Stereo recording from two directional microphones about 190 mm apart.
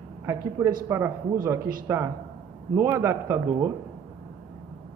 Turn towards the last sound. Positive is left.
turn(degrees=-15)  # may be behind; listen again after turning